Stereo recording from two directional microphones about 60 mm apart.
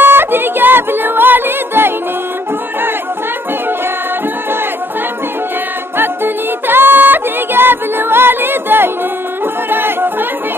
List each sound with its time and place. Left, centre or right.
0.0 s music: right
5.9 s music: right